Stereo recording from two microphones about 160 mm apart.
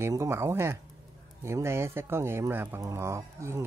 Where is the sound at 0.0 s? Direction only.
15° right (ahead or behind).